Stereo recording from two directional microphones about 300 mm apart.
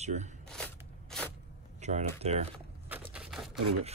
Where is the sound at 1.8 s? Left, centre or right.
Right.